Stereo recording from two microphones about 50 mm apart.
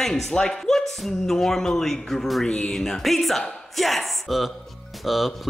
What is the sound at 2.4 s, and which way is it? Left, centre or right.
Speech, centre.